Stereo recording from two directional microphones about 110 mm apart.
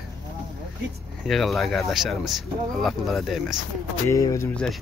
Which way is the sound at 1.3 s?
Centre (ahead or behind).